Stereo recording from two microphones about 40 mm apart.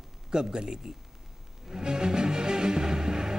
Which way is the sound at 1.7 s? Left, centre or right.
Centre.